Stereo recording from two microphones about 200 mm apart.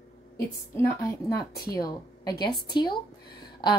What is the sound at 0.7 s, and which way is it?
A woman's voice, 15° left (ahead or behind).